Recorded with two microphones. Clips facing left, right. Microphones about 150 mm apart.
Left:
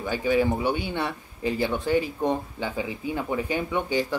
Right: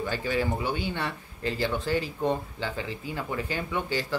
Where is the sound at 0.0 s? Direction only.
15° left (ahead or behind).